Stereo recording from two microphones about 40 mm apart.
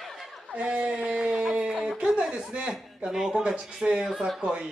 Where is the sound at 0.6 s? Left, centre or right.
Right.